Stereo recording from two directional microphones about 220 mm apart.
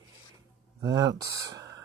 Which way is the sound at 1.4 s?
15° right (ahead or behind).